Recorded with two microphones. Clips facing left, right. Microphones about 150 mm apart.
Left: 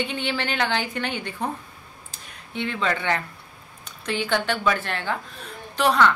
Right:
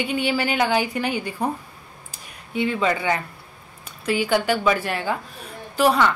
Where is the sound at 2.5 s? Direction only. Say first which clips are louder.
Right 4 dB; 10° right (ahead or behind).